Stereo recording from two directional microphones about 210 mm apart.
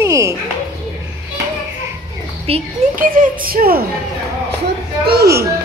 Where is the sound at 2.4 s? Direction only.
30° right (ahead or behind); by 5.2 s 45° right (ahead or behind).